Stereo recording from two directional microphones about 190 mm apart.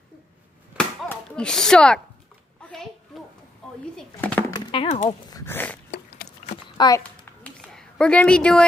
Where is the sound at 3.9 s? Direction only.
5° left (ahead or behind).